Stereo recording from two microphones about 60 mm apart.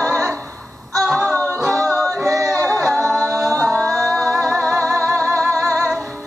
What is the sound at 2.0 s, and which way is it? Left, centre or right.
Singing, right.